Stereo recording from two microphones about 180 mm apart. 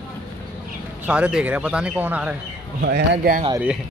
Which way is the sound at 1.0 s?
5° right (ahead or behind).